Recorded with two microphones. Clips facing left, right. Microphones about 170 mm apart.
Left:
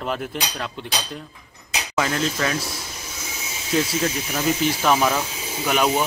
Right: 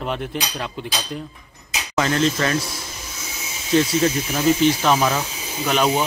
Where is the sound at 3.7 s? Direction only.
5° right (ahead or behind).